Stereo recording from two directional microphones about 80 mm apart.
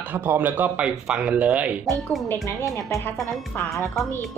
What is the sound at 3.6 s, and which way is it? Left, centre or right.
Speech, left.